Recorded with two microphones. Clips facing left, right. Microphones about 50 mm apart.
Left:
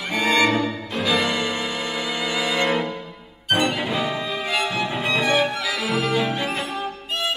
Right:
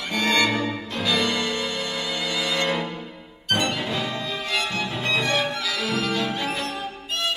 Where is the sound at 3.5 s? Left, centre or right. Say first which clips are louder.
Left 3 dB; centre.